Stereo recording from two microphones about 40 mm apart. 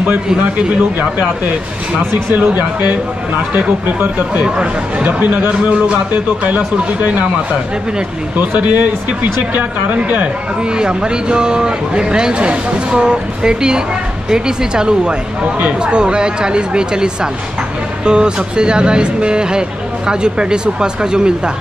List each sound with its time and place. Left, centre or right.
0.4 s speech: right
2.3 s speech: right
4.4 s speech: right
5.0 s speech: right
5.5 s speech: right
8.4 s speech: right
10.7 s speech: right